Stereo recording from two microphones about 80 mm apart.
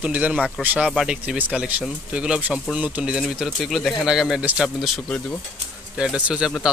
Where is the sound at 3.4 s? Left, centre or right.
Centre.